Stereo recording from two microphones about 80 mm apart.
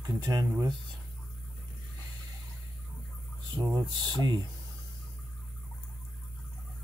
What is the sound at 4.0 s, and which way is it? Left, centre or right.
Speech, right.